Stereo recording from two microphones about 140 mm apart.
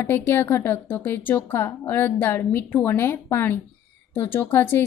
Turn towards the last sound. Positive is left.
turn(degrees=15)  # may be behind; listen again after turning